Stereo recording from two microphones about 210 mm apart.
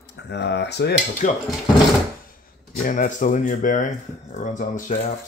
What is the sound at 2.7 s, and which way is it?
Speech, 40° left (ahead or behind).